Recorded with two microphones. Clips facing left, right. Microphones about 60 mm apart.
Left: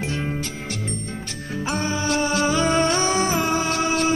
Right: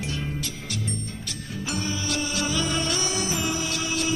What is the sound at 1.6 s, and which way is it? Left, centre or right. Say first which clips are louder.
Music: left 6 dB; left.